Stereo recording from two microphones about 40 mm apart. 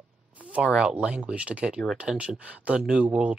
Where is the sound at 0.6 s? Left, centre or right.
Centre.